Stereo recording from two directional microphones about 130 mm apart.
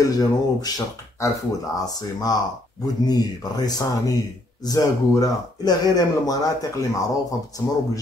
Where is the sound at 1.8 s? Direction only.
30° left (ahead or behind).